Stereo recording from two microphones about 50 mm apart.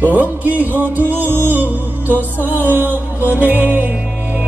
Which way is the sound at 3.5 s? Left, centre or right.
Right.